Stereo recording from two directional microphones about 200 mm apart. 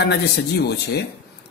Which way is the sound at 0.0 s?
55° left (ahead or behind).